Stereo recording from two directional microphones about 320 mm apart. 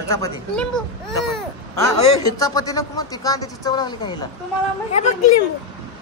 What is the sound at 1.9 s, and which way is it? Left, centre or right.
Speech, centre.